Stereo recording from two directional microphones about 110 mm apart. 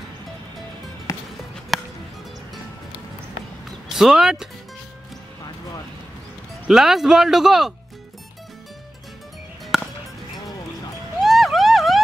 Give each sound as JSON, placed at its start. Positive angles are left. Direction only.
{"t": 1.1, "sound": "music", "side_deg": 30}
{"t": 1.7, "sound": "music", "side_deg": 0}
{"t": 3.9, "sound": "speech", "side_deg": -5}
{"t": 6.7, "sound": "speech", "side_deg": -5}
{"t": 9.7, "sound": "music", "side_deg": -5}
{"t": 11.1, "sound": "vehicle", "side_deg": 0}